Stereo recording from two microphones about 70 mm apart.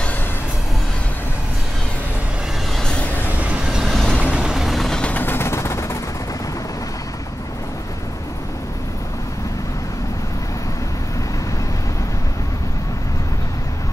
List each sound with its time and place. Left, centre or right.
2.8 s vehicle: centre
3.3 s train: centre
3.8 s vehicle: centre
4.2 s vehicle: centre
5.0 s a sound: left